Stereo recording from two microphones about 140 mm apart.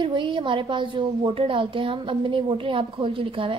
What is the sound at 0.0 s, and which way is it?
A woman's voice, 35° right (ahead or behind).